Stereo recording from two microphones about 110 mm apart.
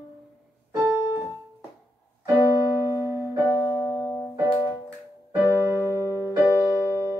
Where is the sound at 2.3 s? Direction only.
25° left (ahead or behind).